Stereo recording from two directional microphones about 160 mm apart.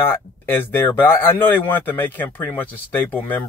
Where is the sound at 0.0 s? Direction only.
15° left (ahead or behind).